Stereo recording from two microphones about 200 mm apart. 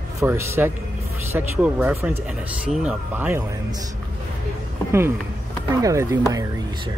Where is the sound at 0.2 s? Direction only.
10° right (ahead or behind).